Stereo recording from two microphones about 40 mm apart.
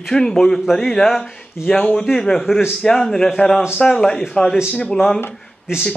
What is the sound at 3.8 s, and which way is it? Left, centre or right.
Speech, centre.